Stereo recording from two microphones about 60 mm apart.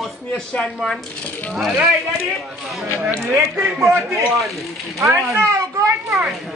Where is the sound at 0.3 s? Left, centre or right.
Centre.